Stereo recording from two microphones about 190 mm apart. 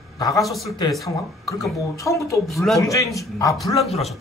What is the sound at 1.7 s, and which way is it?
A woman's voice, 15° left (ahead or behind).